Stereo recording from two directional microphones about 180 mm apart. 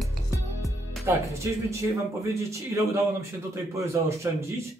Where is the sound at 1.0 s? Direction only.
15° right (ahead or behind).